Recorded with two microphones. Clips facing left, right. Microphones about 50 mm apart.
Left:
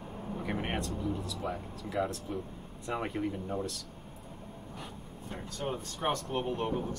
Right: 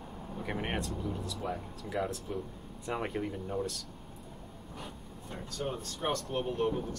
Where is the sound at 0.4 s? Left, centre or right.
Centre.